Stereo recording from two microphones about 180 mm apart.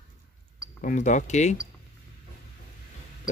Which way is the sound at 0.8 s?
45° left (ahead or behind).